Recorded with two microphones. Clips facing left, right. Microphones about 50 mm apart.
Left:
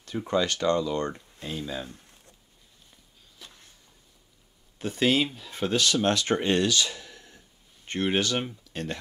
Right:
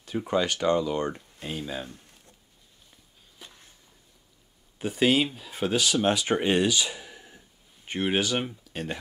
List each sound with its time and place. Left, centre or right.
0.3 s speech: centre
3.3 s a sound: centre
4.7 s speech: centre